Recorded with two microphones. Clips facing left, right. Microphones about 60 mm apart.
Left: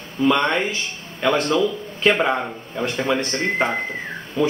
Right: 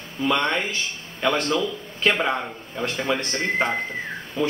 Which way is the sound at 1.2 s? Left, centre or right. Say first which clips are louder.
Left 4 dB; centre.